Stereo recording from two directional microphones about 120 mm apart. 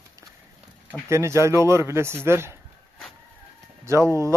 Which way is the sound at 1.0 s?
25° right (ahead or behind).